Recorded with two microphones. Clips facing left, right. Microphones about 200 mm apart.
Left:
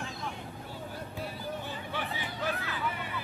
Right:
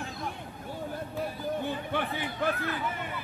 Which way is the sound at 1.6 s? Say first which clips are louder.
Right 6 dB; 55° right (ahead or behind).